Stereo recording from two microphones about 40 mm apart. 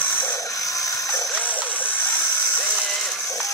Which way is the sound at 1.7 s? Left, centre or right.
Left.